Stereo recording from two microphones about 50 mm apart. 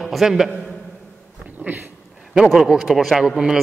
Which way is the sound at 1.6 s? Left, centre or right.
Right.